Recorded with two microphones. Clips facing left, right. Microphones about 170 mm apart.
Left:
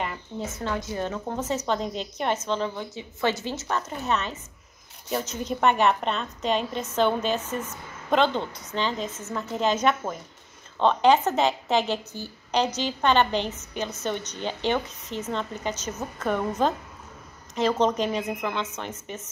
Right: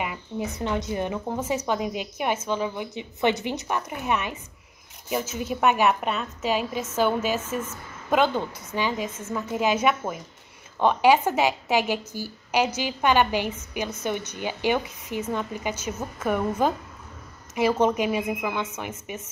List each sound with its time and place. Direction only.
0.0 s a woman's voice: 10° right (ahead or behind)